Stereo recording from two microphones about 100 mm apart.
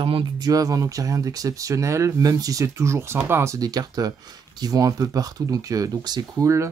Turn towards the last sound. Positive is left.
turn(degrees=-45)  # may be behind; listen again after turning